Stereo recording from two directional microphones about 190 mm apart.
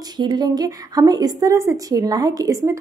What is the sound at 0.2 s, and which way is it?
A woman's voice, 20° right (ahead or behind).